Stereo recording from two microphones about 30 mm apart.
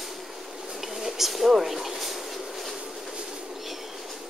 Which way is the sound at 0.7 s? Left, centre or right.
Centre.